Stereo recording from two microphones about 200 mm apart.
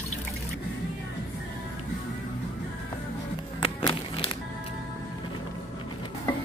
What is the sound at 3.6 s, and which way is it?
Music, 25° left (ahead or behind).